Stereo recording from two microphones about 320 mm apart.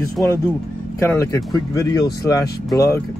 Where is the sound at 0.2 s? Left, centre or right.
Centre.